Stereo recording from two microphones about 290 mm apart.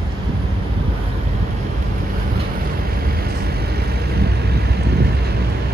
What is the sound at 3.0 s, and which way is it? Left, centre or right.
Vehicle, right.